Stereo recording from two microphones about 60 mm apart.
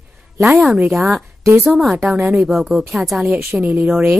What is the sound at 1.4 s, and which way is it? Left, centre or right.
Speech, right.